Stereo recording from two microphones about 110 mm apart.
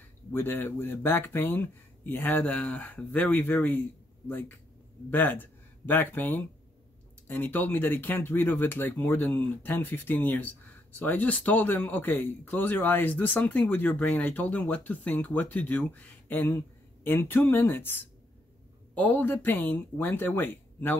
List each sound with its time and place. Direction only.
0.3 s speech: 20° left (ahead or behind)